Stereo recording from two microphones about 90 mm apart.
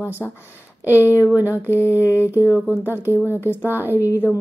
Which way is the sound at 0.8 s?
20° right (ahead or behind).